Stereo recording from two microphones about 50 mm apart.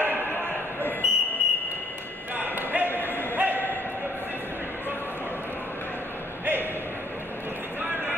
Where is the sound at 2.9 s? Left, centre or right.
Left.